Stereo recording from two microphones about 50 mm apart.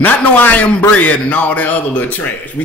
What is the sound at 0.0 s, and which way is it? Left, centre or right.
A man's voice, left.